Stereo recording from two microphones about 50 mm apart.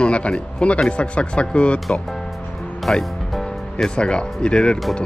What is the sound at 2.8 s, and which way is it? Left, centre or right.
Music, centre.